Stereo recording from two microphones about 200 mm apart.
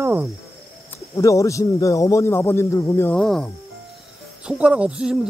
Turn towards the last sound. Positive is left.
turn(degrees=-5)  # may be behind; listen again after turning